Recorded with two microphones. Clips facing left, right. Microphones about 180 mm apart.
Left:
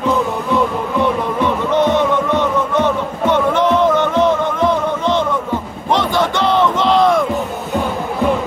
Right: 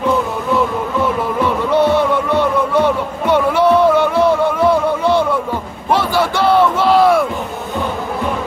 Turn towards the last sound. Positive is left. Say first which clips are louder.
# right 1 dB
turn(degrees=-5)  # may be behind; listen again after turning